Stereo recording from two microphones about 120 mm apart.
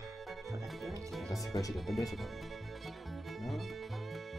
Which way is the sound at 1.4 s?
30° left (ahead or behind).